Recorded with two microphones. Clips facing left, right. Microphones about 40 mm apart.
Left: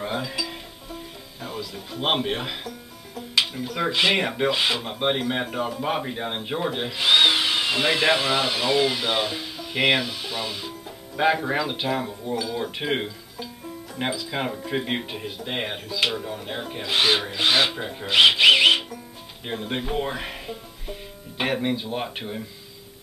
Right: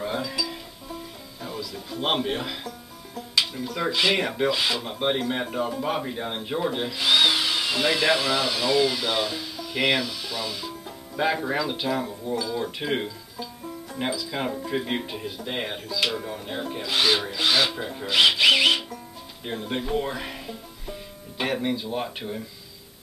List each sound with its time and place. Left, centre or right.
0.0 s speech: centre